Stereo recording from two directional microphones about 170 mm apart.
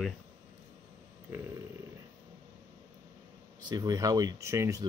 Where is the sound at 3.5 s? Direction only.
25° right (ahead or behind).